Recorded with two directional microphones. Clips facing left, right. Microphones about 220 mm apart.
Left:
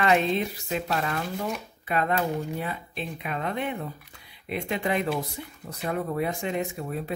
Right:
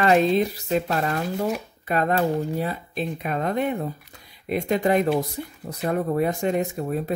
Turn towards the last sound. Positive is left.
turn(degrees=-40)  # may be behind; listen again after turning